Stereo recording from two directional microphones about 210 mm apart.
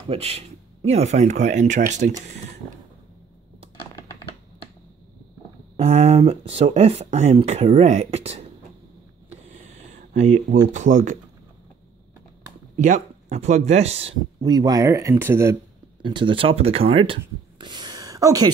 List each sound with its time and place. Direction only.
0.1 s speech: 30° right (ahead or behind)
5.8 s speech: 30° right (ahead or behind)
10.1 s speech: 35° right (ahead or behind)
12.7 s speech: 35° right (ahead or behind)
14.4 s speech: 20° right (ahead or behind)
16.0 s speech: 25° right (ahead or behind)